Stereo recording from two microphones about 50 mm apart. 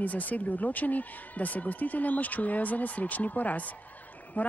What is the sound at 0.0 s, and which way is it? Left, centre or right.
Speech, left.